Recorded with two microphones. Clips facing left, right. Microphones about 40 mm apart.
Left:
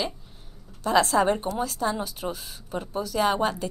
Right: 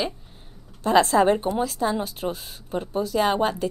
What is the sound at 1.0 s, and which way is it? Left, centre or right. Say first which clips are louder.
A woman's voice: right 3 dB; right.